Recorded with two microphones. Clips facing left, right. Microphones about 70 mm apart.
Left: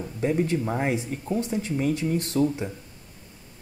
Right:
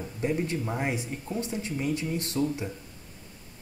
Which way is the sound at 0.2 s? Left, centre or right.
Left.